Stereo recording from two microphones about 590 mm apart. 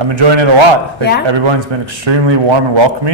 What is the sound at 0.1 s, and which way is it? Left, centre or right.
Speech, right.